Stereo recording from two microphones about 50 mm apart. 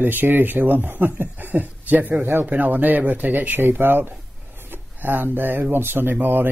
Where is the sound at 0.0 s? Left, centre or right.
Right.